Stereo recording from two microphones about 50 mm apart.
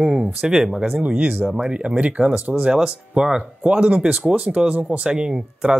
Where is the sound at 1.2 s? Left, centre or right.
Right.